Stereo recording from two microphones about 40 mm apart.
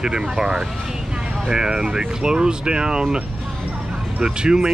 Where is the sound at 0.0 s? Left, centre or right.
Centre.